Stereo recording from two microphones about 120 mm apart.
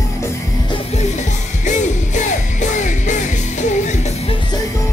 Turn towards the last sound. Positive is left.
turn(degrees=85)